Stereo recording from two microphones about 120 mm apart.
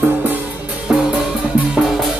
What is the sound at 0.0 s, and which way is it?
Music, 15° right (ahead or behind).